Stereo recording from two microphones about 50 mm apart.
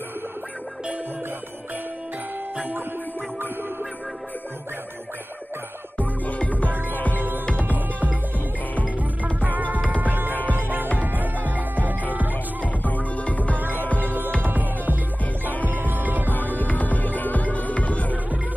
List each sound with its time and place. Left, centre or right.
6.2 s music: left
6.7 s music: right
7.4 s music: left
7.7 s music: right
12.8 s music: left
13.6 s music: right
16.3 s music: left